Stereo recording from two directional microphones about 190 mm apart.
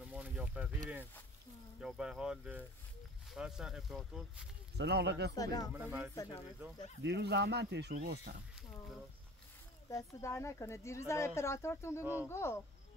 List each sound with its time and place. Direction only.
0.0 s a sound: 5° right (ahead or behind)
1.8 s speech: 5° right (ahead or behind)
4.7 s speech: 60° right (ahead or behind)
5.3 s speech: 20° left (ahead or behind)
5.7 s speech: 10° right (ahead or behind)
7.0 s speech: 65° right (ahead or behind)
9.8 s speech: 15° left (ahead or behind)
12.0 s speech: 10° right (ahead or behind)
12.3 s speech: 15° left (ahead or behind)